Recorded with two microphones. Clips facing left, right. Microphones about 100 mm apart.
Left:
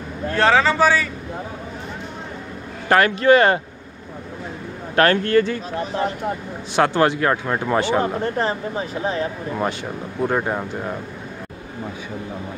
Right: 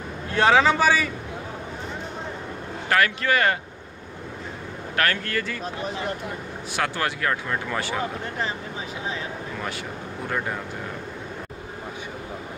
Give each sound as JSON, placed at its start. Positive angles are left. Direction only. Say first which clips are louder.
{"t": 0.3, "sound": "speech", "louder": "left 1 dB", "side_deg": -10}
{"t": 2.9, "sound": "speech", "louder": "left 8 dB", "side_deg": 30}
{"t": 4.9, "sound": "speech", "louder": "left 10 dB", "side_deg": 30}